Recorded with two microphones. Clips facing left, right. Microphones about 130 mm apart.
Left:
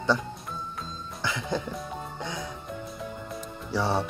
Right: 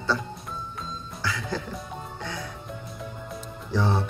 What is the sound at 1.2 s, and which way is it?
Music, 20° left (ahead or behind).